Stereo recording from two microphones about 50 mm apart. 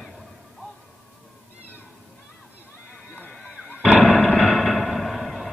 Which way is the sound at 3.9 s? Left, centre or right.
Left.